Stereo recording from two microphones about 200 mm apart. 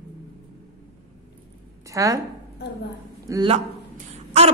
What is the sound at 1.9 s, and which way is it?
Speech, 15° right (ahead or behind).